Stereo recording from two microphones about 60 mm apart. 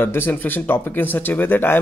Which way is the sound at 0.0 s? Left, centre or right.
Left.